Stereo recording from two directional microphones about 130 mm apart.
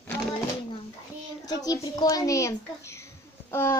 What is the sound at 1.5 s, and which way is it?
A child's voice, 30° left (ahead or behind).